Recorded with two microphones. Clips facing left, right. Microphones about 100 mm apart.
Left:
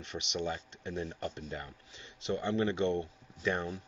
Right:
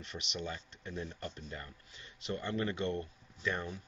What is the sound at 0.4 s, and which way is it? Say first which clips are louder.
Speech: left 6 dB; 25° left (ahead or behind).